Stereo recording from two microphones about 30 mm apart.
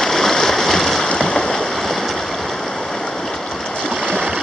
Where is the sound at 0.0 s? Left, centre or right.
Centre.